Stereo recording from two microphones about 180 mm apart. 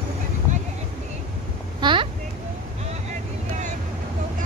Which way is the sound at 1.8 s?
25° right (ahead or behind).